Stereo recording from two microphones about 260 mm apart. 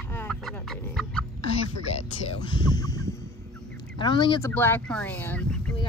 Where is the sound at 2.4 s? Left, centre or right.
Centre.